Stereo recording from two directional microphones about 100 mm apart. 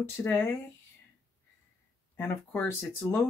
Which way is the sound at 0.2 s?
25° left (ahead or behind).